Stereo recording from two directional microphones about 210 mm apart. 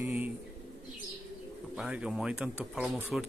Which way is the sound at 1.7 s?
5° right (ahead or behind).